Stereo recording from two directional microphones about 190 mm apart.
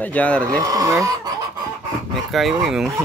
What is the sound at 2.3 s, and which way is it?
Speech, centre (ahead or behind).